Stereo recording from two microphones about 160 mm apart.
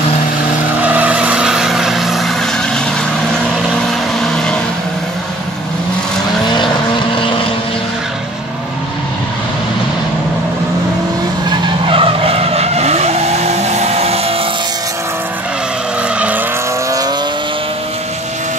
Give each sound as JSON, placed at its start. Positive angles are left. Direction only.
{"t": 0.8, "sound": "vehicle", "side_deg": -10}
{"t": 11.4, "sound": "vehicle", "side_deg": -30}
{"t": 16.2, "sound": "vehicle", "side_deg": -10}